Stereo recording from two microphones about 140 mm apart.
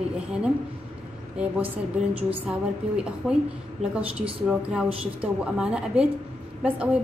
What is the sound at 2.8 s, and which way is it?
Speech, 45° right (ahead or behind).